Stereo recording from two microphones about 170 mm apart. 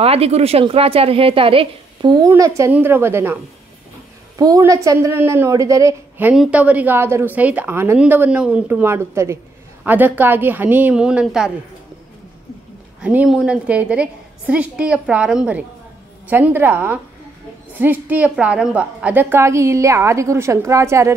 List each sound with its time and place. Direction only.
0.0 s a woman's voice: 35° right (ahead or behind); by 3.3 s 15° right (ahead or behind)
4.4 s a woman's voice: 20° right (ahead or behind); by 11.5 s 5° right (ahead or behind)
13.0 s a woman's voice: 5° right (ahead or behind)